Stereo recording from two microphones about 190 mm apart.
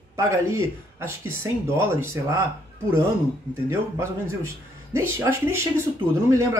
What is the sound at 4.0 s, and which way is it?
A man's voice, 15° right (ahead or behind).